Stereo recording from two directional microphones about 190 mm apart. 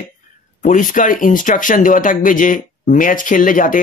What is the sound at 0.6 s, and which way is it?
Speech, 45° left (ahead or behind).